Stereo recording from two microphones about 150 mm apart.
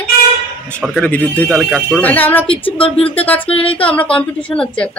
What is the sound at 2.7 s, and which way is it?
Speech, 40° left (ahead or behind).